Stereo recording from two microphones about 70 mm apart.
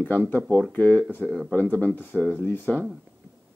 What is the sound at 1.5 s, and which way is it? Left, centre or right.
Speech, left.